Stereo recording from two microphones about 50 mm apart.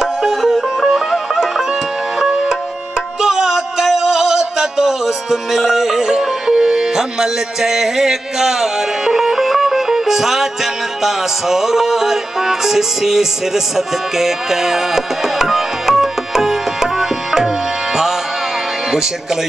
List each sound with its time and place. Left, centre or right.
0.0 s music: centre